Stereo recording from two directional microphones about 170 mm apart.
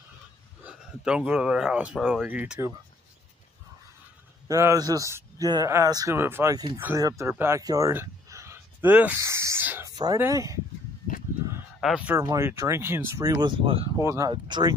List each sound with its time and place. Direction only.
0.7 s speech: 5° right (ahead or behind)
4.5 s speech: 15° right (ahead or behind)
11.8 s speech: 5° right (ahead or behind)
12.2 s speech: 15° right (ahead or behind); by 13.8 s 30° right (ahead or behind)
14.0 s speech: 20° right (ahead or behind)